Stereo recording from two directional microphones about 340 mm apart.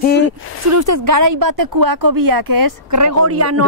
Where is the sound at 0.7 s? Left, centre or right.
Right.